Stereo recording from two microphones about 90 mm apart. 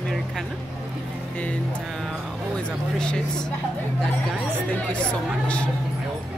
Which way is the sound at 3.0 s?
10° left (ahead or behind).